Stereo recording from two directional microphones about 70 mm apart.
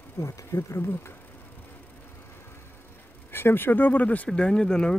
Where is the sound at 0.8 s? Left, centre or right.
Left.